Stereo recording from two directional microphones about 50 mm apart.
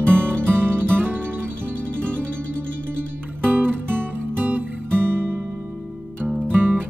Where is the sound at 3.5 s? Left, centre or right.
Right.